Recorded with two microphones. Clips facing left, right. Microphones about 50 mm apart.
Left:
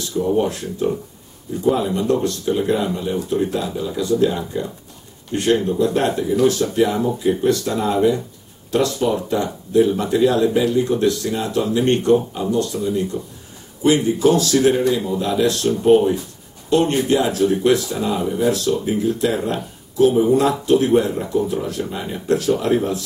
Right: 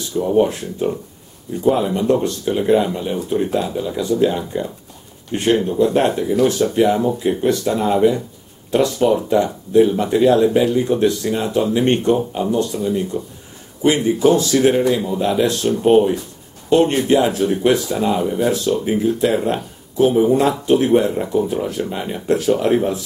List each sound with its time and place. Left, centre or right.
0.4 s speech: right